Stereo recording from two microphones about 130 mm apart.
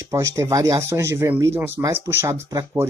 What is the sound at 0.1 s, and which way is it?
Speech, 20° right (ahead or behind).